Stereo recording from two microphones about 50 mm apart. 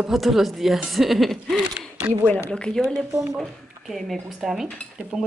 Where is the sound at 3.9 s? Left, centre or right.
Centre.